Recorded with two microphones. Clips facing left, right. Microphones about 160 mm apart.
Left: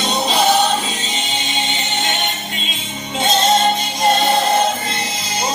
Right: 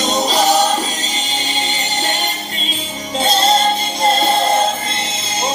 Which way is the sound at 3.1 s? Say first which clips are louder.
Right 1 dB; 35° right (ahead or behind).